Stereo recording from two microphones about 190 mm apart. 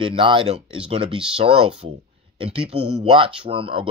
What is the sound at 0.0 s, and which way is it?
Speech, 30° right (ahead or behind).